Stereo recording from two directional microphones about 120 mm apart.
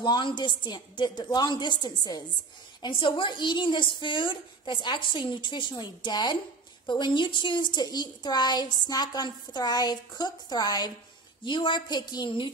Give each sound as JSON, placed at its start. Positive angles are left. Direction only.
{"t": 0.0, "sound": "a woman's voice", "side_deg": 40}